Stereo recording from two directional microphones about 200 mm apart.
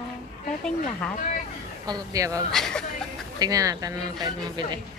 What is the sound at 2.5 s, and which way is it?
Speech, 5° left (ahead or behind).